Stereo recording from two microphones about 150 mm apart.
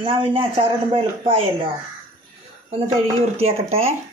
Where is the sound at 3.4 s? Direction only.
40° right (ahead or behind).